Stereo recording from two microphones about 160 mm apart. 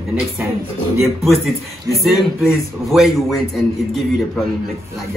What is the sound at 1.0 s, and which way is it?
A man's voice, centre (ahead or behind).